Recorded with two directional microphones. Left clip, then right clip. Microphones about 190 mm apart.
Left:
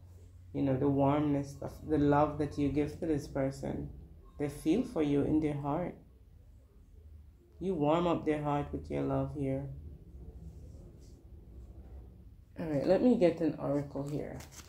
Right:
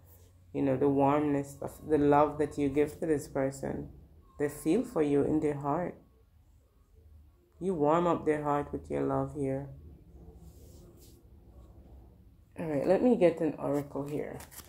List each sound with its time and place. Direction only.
0.5 s speech: 25° right (ahead or behind)
7.6 s speech: 25° right (ahead or behind)
12.5 s speech: 20° right (ahead or behind)